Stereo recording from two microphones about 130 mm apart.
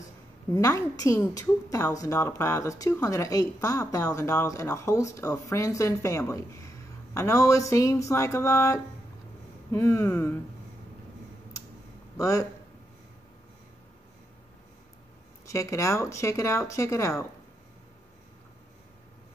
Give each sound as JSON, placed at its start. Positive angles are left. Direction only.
{"t": 0.5, "sound": "a woman's voice", "side_deg": 25}
{"t": 12.2, "sound": "a woman's voice", "side_deg": 25}
{"t": 15.4, "sound": "a woman's voice", "side_deg": 25}